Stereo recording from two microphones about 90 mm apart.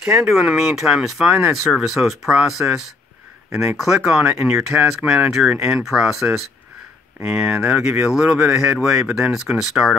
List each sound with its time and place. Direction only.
0.0 s speech: 5° right (ahead or behind)
1.2 s speech: 25° right (ahead or behind)
1.5 s speech: 5° right (ahead or behind)